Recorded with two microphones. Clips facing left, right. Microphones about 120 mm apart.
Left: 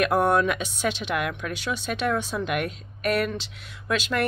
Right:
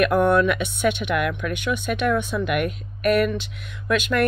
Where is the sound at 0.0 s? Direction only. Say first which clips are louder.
Right 3 dB; 35° left (ahead or behind).